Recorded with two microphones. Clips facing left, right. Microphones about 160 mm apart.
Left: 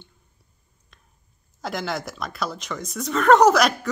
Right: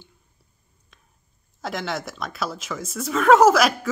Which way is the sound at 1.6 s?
Centre (ahead or behind).